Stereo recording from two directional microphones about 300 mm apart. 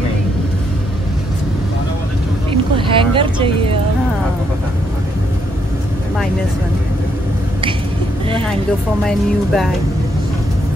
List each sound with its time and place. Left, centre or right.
2.5 s vehicle: centre
9.0 s speech: centre